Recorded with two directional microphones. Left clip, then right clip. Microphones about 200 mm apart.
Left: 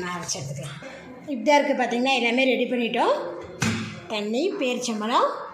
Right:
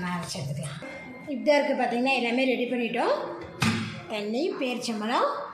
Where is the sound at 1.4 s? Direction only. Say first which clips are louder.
Left 3 dB; 20° left (ahead or behind).